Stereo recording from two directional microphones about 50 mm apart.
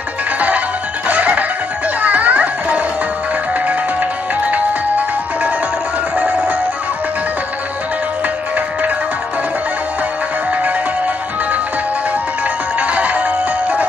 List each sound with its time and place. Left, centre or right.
1.0 s music: right
4.5 s music: right
12.7 s music: right